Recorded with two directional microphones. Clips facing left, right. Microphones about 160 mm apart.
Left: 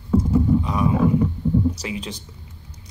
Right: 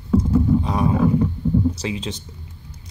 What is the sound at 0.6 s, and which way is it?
Roaring cats, 35° right (ahead or behind).